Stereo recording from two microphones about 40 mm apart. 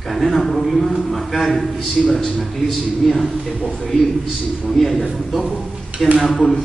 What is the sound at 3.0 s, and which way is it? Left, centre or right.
Speech, centre.